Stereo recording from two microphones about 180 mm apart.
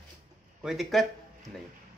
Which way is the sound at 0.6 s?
Centre (ahead or behind).